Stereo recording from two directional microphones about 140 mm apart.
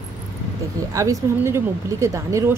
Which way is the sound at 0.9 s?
20° right (ahead or behind).